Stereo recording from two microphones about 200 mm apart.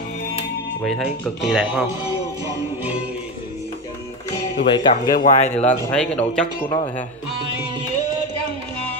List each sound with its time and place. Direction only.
0.8 s speech: centre (ahead or behind)
4.6 s speech: 20° left (ahead or behind)
5.1 s speech: 35° left (ahead or behind)
5.9 s speech: 5° left (ahead or behind)